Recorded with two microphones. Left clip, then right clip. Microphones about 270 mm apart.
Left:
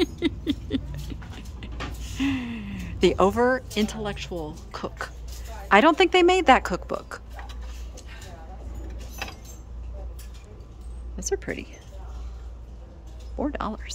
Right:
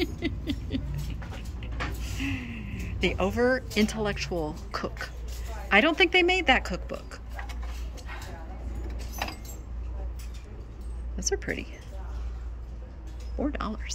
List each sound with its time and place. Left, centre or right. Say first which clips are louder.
0.0 s patter: left 6 dB; centre
2.1 s gasp: left 8 dB; left
3.4 s speech: left 2 dB; centre
11.1 s speech: left 1 dB; centre
13.4 s speech: left 3 dB; centre